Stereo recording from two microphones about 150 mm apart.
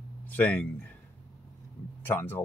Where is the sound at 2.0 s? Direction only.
15° left (ahead or behind).